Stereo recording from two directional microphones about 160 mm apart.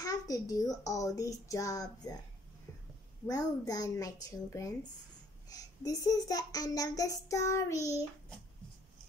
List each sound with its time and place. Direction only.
0.0 s a child's voice: 25° left (ahead or behind)
3.3 s a child's voice: 25° left (ahead or behind)